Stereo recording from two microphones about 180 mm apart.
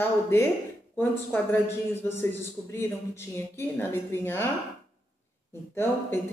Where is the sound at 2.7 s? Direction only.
15° left (ahead or behind).